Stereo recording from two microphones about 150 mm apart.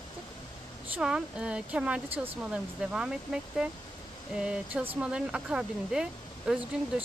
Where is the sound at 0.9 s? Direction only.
5° right (ahead or behind).